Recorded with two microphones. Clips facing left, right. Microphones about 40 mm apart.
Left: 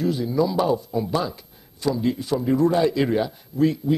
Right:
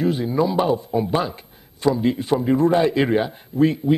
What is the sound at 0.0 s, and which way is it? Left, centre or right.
A man's voice, right.